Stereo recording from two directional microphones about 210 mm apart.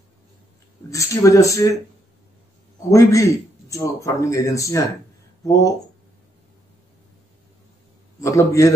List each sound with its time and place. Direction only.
0.8 s a man's voice: 15° left (ahead or behind)
2.9 s a man's voice: 15° left (ahead or behind)
8.2 s a man's voice: 15° left (ahead or behind)